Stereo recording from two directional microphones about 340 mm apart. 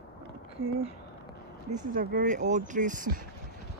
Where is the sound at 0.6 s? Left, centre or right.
Right.